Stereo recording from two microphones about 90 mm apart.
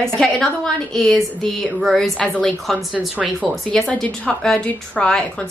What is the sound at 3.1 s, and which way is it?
Speech, 15° right (ahead or behind).